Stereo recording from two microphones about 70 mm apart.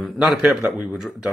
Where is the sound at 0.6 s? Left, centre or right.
Centre.